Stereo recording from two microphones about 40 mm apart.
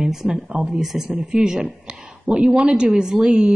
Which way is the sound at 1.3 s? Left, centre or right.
Right.